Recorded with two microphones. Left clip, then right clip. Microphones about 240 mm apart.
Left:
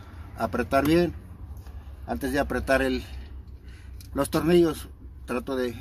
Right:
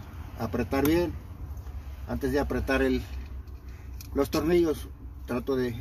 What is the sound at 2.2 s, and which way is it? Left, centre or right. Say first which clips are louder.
Speech: left 1 dB; left.